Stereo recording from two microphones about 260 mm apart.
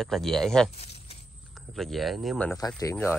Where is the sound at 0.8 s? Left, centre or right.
Left.